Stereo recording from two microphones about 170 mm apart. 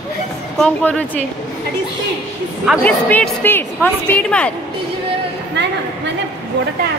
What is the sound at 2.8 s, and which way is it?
A woman's voice, 10° left (ahead or behind).